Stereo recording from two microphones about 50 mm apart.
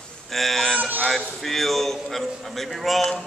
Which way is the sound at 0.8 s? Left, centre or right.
Right.